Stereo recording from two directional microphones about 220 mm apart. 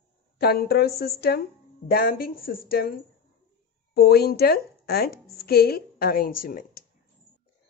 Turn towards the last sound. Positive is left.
turn(degrees=40)  # may be behind; listen again after turning